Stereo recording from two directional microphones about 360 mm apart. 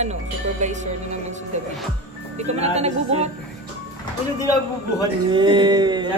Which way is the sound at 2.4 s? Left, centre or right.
Centre.